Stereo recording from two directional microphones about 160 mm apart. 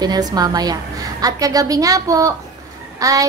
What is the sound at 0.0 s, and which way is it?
A woman's voice, 25° right (ahead or behind).